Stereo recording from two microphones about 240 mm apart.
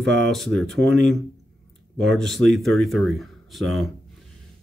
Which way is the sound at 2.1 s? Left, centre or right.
Centre.